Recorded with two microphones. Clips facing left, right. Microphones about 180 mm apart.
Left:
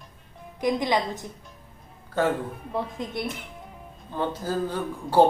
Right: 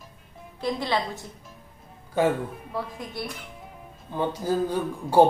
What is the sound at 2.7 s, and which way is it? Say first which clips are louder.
Speech: left 3 dB; 20° left (ahead or behind).